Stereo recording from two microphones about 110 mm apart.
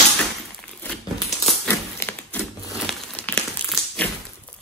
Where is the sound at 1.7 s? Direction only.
20° left (ahead or behind).